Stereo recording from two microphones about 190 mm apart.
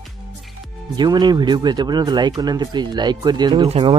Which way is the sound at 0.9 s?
25° right (ahead or behind).